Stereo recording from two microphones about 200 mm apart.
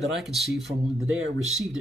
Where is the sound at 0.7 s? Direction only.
30° right (ahead or behind).